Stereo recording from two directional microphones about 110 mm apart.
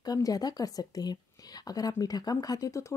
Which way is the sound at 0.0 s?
35° left (ahead or behind).